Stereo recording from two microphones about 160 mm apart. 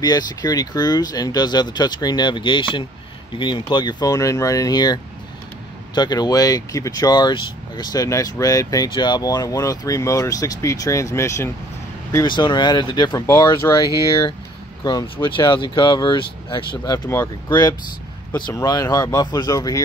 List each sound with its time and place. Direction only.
0.0 s speech: 25° left (ahead or behind)